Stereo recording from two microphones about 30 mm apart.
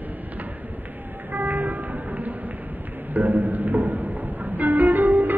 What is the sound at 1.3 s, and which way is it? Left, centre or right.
Music, right.